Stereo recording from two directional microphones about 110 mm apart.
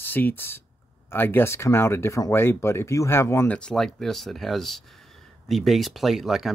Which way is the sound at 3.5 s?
5° left (ahead or behind).